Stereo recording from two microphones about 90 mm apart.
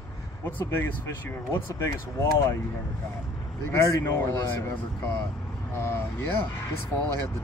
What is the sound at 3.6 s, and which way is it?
Speech, 30° left (ahead or behind).